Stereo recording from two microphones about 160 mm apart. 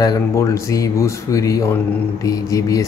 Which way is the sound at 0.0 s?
20° left (ahead or behind).